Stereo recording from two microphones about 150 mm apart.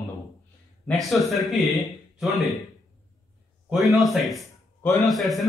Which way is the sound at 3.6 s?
Centre (ahead or behind).